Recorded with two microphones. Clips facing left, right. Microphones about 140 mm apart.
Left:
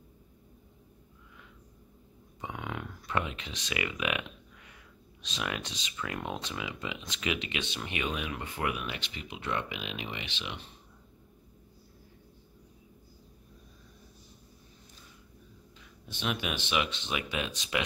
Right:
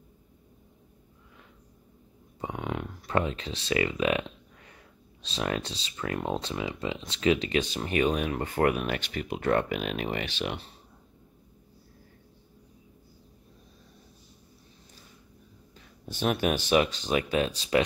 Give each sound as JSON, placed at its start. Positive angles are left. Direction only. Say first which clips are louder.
{"t": 2.4, "sound": "dog", "louder": "right 5 dB", "side_deg": -25}
{"t": 3.2, "sound": "speech", "louder": "right 6 dB", "side_deg": -35}
{"t": 16.1, "sound": "speech", "louder": "right 8 dB", "side_deg": -45}